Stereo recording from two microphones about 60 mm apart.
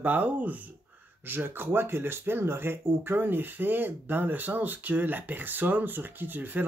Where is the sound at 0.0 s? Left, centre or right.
Right.